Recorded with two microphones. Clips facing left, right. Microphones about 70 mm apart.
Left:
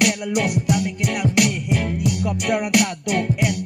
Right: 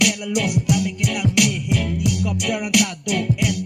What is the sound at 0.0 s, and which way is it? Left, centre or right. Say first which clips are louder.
Music: left 1 dB; left.